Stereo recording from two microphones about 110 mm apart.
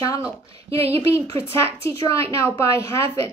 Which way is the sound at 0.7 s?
65° right (ahead or behind).